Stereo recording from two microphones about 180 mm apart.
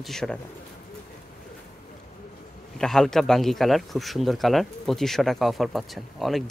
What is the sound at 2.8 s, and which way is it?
Speech, centre (ahead or behind).